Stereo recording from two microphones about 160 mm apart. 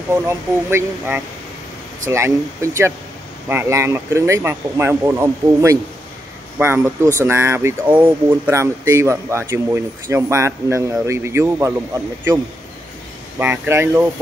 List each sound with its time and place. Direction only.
0.1 s speech: 15° right (ahead or behind)
13.4 s speech: 15° right (ahead or behind)